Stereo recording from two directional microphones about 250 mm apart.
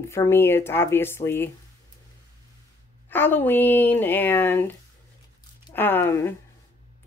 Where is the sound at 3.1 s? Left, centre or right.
Centre.